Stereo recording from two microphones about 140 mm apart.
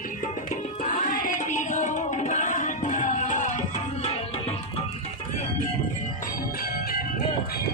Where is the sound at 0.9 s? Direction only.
75° left (ahead or behind).